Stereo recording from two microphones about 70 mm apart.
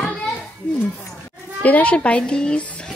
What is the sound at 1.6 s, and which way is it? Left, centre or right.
A woman's voice, left.